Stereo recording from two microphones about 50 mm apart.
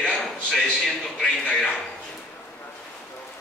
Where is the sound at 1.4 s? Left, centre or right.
Centre.